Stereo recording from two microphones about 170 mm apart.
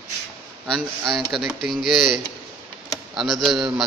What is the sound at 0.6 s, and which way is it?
Speech, 5° left (ahead or behind).